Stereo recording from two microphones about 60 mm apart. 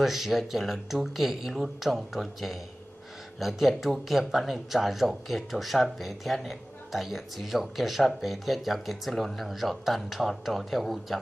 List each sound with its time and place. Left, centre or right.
0.0 s speech: centre